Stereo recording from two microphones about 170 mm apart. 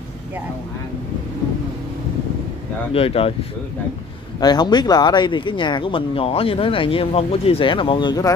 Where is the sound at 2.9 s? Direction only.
35° left (ahead or behind).